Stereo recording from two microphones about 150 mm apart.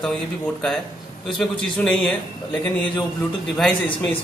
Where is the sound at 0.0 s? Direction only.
Centre (ahead or behind).